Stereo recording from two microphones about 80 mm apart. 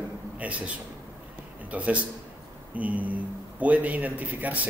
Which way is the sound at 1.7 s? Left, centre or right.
Centre.